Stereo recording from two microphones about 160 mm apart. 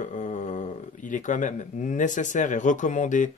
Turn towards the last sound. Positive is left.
turn(degrees=50)  # may be behind; listen again after turning